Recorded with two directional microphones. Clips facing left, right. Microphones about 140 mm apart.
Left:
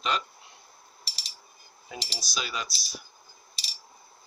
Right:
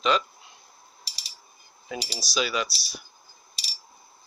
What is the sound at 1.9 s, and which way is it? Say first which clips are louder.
Speech: right 6 dB; 90° right.